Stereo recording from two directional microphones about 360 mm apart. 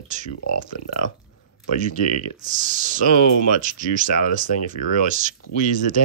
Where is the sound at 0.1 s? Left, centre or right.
Centre.